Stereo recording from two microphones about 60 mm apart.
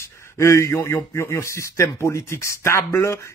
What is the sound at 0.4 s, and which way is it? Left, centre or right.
A man's voice, left.